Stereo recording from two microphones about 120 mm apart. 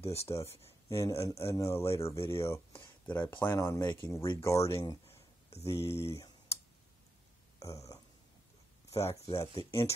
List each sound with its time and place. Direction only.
0.0 s speech: 60° left (ahead or behind)
0.3 s speech: 20° left (ahead or behind)
3.5 s speech: 25° left (ahead or behind)
5.0 s a sound: 55° left (ahead or behind)
5.9 s speech: 20° left (ahead or behind)
7.5 s a sound: 25° left (ahead or behind)
8.9 s speech: 60° left (ahead or behind)
9.2 s speech: 25° left (ahead or behind)